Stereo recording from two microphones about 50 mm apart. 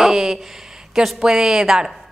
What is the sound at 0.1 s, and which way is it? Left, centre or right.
A woman's voice, centre.